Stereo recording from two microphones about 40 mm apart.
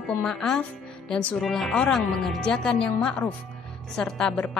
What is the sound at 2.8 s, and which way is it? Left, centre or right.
Speech, left.